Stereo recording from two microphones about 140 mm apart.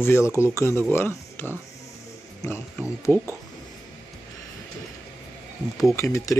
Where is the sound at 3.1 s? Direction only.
15° left (ahead or behind).